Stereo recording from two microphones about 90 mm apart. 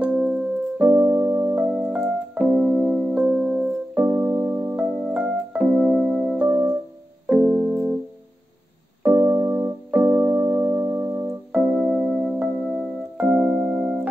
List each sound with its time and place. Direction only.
0.0 s keyboard: 5° right (ahead or behind)
0.8 s keyboard: 30° right (ahead or behind)
1.9 s keyboard: 10° right (ahead or behind)
4.0 s keyboard: 30° right (ahead or behind)
5.1 s keyboard: 10° right (ahead or behind)
5.8 s music: 5° right (ahead or behind)
6.3 s keyboard: 25° right (ahead or behind)
7.2 s keyboard: 10° right (ahead or behind)
9.1 s keyboard: 30° right (ahead or behind)
11.5 s keyboard: 10° right (ahead or behind)
11.9 s music: centre (ahead or behind)
13.2 s keyboard: 10° right (ahead or behind)